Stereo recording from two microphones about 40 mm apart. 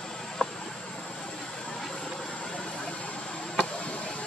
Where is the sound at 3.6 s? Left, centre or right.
Left.